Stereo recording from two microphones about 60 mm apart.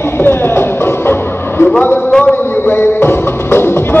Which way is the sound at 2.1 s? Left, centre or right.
Centre.